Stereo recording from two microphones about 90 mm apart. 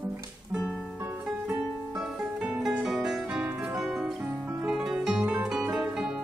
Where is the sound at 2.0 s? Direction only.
15° right (ahead or behind).